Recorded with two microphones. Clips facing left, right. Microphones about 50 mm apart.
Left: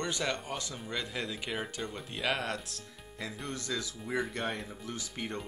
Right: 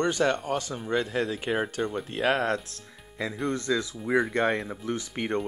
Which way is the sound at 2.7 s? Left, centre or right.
Right.